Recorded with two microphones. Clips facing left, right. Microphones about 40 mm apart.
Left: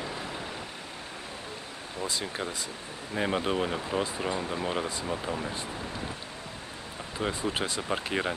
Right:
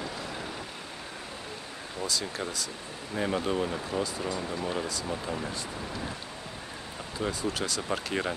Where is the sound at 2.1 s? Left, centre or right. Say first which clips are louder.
Even; left.